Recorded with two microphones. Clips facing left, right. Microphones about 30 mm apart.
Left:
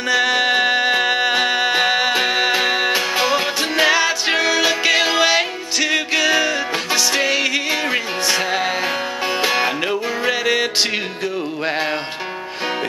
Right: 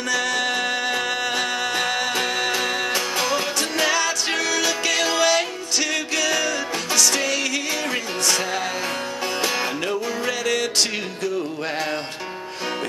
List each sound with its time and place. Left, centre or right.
0.1 s music: left